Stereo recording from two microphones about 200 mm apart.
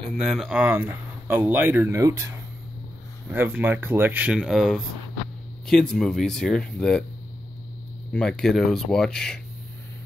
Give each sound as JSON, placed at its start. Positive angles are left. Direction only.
{"t": 0.2, "sound": "speech", "side_deg": 0}
{"t": 3.3, "sound": "speech", "side_deg": -10}
{"t": 8.1, "sound": "speech", "side_deg": 5}